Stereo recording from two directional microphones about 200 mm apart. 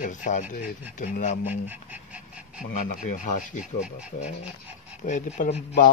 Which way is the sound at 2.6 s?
40° left (ahead or behind).